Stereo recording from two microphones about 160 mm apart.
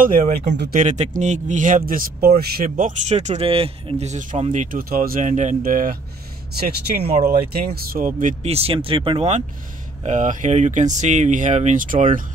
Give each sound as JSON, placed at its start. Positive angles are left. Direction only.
{"t": 0.0, "sound": "speech", "side_deg": -60}
{"t": 0.7, "sound": "speech", "side_deg": -50}
{"t": 2.8, "sound": "speech", "side_deg": -45}
{"t": 7.2, "sound": "speech", "side_deg": -70}
{"t": 8.5, "sound": "speech", "side_deg": -40}
{"t": 10.0, "sound": "speech", "side_deg": -50}